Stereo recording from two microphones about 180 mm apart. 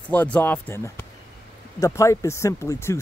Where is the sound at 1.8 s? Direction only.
15° left (ahead or behind).